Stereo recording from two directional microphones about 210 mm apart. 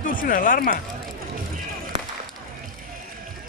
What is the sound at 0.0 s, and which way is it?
Speech, 40° left (ahead or behind).